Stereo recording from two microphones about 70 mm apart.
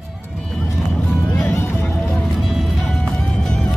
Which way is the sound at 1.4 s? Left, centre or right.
Left.